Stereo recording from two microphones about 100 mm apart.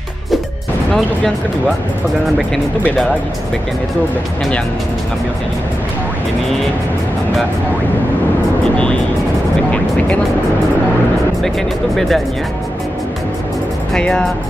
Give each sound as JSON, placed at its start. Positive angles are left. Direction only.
{"t": 9.7, "sound": "speech", "side_deg": 15}
{"t": 11.4, "sound": "speech", "side_deg": 0}
{"t": 13.9, "sound": "speech", "side_deg": 5}